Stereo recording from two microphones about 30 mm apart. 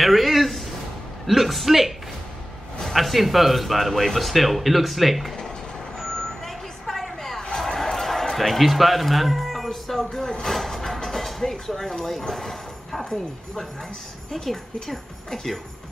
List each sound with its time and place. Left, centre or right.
0.0 s a sound: centre
1.2 s speech: centre
5.9 s vehicle: centre
7.5 s a sound: centre
9.7 s music: centre
10.4 s a sound: centre
12.0 s speech: centre
13.0 s a woman's voice: centre
14.3 s a woman's voice: centre